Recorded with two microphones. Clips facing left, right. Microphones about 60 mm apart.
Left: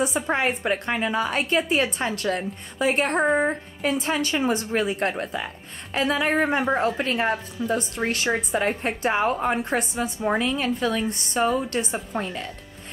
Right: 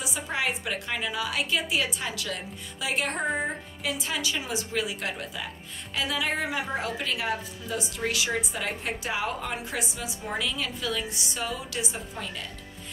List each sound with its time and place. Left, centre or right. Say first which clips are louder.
0.0 s a woman's voice: left 7 dB; left
12.2 s a woman's voice: left 7 dB; left